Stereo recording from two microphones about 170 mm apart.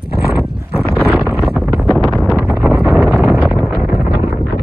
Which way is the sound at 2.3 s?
Centre (ahead or behind).